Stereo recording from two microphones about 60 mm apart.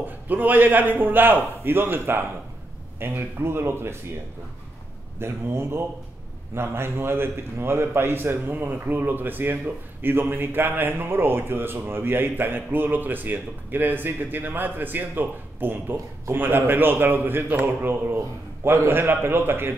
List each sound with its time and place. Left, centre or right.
0.0 s speech: right
5.2 s speech: right